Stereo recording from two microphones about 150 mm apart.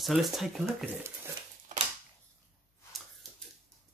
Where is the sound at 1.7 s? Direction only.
55° right (ahead or behind).